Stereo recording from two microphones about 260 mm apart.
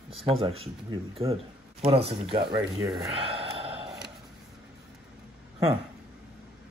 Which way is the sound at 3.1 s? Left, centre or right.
Right.